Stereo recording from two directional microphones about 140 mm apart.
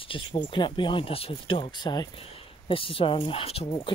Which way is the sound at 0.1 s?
35° left (ahead or behind).